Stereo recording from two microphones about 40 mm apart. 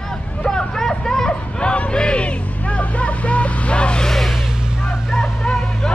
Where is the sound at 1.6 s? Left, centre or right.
Left.